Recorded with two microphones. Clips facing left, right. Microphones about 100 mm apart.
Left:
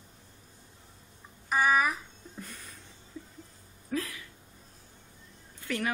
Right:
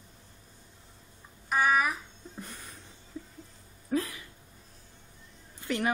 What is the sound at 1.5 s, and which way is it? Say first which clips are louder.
Babbling: even; centre (ahead or behind).